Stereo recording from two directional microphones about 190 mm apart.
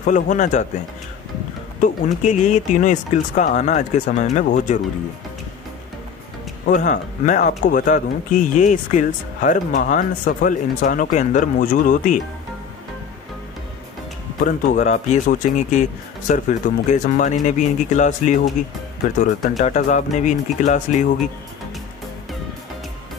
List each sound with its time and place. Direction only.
0.0 s a man's voice: 40° left (ahead or behind)
1.8 s a man's voice: 40° left (ahead or behind)
6.6 s speech: 40° left (ahead or behind)
14.4 s a man's voice: 45° left (ahead or behind)
19.6 s a man's voice: 40° left (ahead or behind)